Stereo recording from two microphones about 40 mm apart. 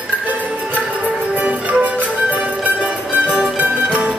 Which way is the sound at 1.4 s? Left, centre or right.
Right.